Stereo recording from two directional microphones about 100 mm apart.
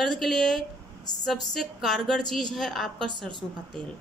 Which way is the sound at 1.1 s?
45° left (ahead or behind).